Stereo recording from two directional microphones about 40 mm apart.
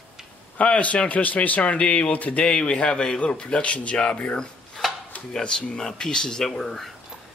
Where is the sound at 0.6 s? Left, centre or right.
Left.